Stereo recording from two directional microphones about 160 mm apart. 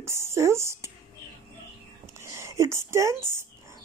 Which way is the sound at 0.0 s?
15° right (ahead or behind).